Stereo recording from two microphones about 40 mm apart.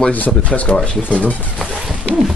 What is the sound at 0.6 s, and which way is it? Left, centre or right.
Speech, left.